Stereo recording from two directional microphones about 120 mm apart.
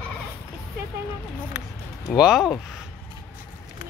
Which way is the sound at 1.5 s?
90° left.